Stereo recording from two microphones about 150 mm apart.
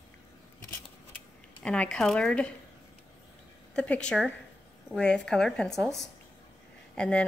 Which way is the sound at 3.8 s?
5° left (ahead or behind).